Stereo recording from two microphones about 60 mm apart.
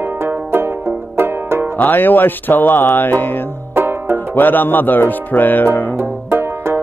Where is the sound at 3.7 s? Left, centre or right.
Right.